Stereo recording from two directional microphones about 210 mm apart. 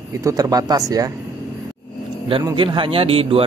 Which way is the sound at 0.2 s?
15° right (ahead or behind).